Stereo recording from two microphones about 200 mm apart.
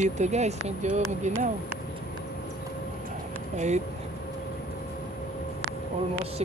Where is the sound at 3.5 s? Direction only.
35° right (ahead or behind).